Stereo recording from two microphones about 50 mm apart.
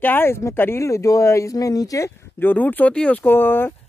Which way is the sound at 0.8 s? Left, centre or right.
Left.